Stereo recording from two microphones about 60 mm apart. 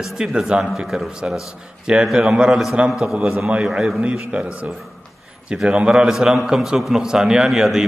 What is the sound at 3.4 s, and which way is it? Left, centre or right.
A man's voice, centre.